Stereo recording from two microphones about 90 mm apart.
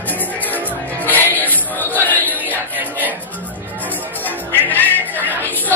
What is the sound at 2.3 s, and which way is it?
Music, 20° right (ahead or behind).